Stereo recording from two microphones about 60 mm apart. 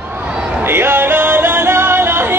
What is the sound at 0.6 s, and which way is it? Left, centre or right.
Music, right.